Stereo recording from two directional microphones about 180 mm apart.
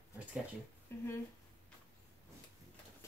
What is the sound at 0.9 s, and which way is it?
Speech, 15° left (ahead or behind).